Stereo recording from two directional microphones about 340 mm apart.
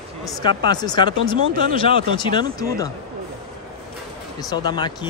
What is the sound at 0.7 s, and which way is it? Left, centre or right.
Speech, centre.